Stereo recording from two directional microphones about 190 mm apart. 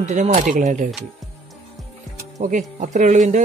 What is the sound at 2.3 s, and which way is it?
Speech, 40° right (ahead or behind).